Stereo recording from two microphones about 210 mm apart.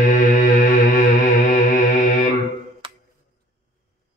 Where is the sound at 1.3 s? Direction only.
40° left (ahead or behind).